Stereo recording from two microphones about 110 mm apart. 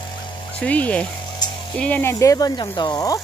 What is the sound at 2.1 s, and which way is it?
Speech, 30° left (ahead or behind).